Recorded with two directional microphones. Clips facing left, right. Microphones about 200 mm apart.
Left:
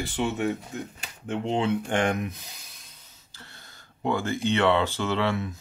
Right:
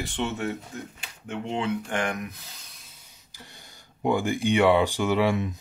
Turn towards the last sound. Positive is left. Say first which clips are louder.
# right 3 dB
turn(degrees=-15)  # may be behind; listen again after turning